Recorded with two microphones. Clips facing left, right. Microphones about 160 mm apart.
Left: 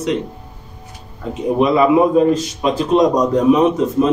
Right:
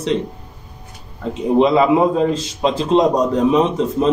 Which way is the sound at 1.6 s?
25° right (ahead or behind).